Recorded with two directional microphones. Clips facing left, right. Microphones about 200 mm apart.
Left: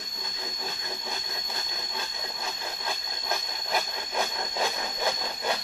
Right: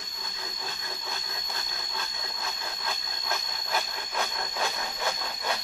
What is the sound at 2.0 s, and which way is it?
Wood, 20° left (ahead or behind).